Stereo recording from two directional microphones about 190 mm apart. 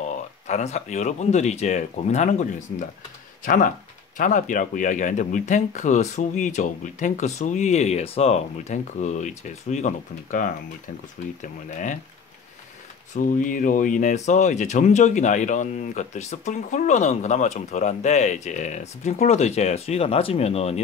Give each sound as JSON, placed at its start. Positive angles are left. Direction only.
{"t": 0.0, "sound": "speech", "side_deg": 40}
{"t": 3.4, "sound": "speech", "side_deg": 45}
{"t": 13.1, "sound": "speech", "side_deg": 45}